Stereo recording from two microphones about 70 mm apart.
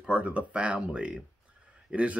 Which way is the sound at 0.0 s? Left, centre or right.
Centre.